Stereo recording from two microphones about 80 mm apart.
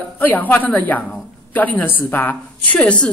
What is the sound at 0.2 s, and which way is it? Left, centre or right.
A woman's voice, left.